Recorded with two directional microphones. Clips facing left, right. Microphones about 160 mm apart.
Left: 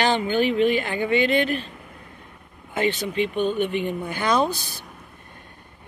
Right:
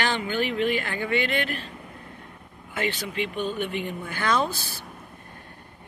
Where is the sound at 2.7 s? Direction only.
20° left (ahead or behind).